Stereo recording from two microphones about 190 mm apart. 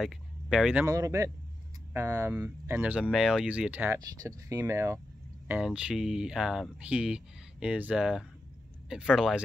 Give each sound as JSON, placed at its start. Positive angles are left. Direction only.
{"t": 0.0, "sound": "speech", "side_deg": 0}
{"t": 0.8, "sound": "speech", "side_deg": -15}
{"t": 5.5, "sound": "speech", "side_deg": -5}